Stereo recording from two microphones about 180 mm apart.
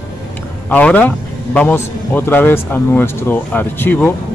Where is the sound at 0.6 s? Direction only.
10° left (ahead or behind).